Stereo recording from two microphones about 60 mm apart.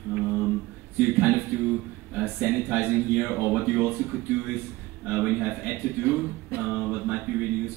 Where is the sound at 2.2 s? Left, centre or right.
Centre.